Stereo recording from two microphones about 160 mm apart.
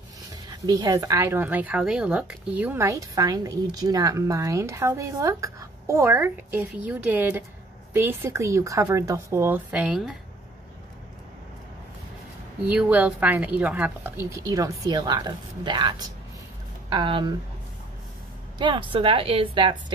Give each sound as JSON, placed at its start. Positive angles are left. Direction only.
{"t": 0.5, "sound": "speech", "side_deg": -25}
{"t": 12.6, "sound": "speech", "side_deg": -10}
{"t": 16.9, "sound": "a woman's voice", "side_deg": -30}
{"t": 18.6, "sound": "a woman's voice", "side_deg": -30}